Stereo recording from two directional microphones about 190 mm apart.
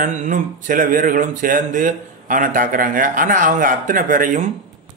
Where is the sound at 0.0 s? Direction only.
45° right (ahead or behind).